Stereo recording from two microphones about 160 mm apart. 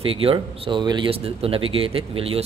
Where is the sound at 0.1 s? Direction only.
35° right (ahead or behind).